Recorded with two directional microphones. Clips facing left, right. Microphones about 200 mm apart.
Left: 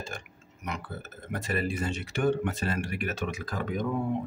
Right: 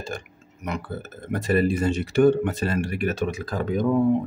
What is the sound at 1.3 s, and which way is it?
Speech, 35° right (ahead or behind).